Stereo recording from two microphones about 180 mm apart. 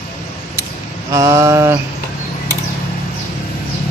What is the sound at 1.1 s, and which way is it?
Speech, 20° right (ahead or behind).